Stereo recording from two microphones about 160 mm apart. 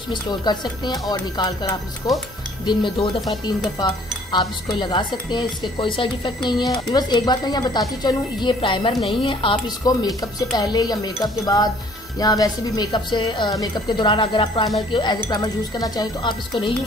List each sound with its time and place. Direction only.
0.1 s speech: 25° left (ahead or behind)